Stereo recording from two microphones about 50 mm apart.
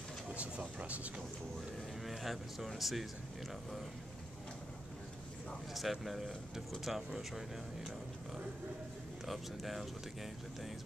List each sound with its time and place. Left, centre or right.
0.3 s a sound: right
2.0 s speech: centre
5.8 s speech: centre
9.2 s speech: centre